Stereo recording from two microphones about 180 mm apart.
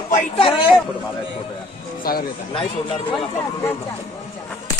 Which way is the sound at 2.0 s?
55° left (ahead or behind).